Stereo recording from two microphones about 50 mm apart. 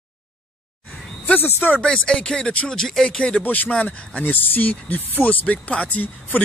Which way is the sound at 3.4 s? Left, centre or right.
Left.